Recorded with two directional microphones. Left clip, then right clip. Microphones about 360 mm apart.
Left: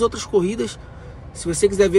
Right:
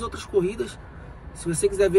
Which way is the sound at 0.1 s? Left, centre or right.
Centre.